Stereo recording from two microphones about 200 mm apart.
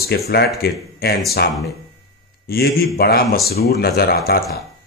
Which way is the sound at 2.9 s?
50° left (ahead or behind).